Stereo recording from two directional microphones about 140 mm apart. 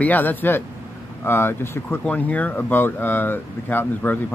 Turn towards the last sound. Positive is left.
turn(degrees=10)  # may be behind; listen again after turning